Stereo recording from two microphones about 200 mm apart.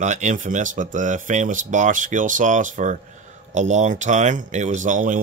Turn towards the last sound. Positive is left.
turn(degrees=-40)  # may be behind; listen again after turning